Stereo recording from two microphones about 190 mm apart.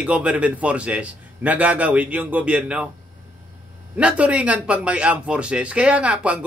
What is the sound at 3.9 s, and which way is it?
Speech, 5° right (ahead or behind).